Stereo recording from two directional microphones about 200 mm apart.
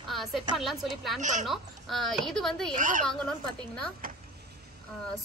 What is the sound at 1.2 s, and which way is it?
Speech, 40° right (ahead or behind).